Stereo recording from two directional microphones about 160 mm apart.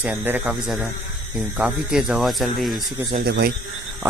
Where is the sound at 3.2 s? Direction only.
85° right.